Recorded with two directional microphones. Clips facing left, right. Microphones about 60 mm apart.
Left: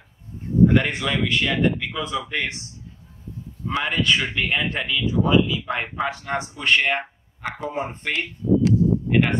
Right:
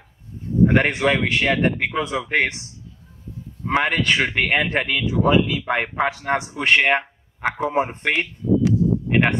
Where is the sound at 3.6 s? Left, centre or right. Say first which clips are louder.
Right 3 dB; right.